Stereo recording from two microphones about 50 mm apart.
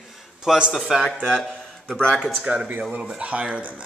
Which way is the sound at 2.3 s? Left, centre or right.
Centre.